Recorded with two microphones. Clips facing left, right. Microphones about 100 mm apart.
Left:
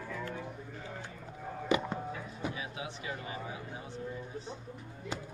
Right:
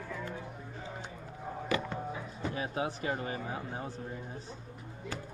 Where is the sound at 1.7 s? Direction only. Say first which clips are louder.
Left 3 dB; 20° left (ahead or behind).